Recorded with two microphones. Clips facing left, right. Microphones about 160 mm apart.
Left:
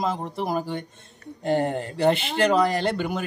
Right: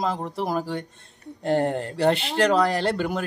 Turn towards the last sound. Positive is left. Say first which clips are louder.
# right 1 dB
turn(degrees=0)  # may be behind; listen again after turning